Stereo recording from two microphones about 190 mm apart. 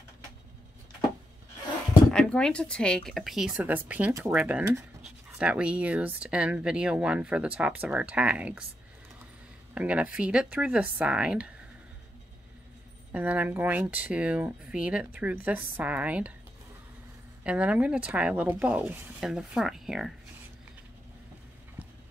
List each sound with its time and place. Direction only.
2.1 s a woman's voice: 5° left (ahead or behind)
9.8 s a woman's voice: 5° right (ahead or behind)
13.1 s a woman's voice: 10° right (ahead or behind)
17.4 s a woman's voice: 5° right (ahead or behind)